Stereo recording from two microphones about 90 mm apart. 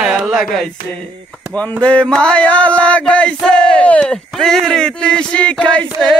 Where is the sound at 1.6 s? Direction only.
15° left (ahead or behind).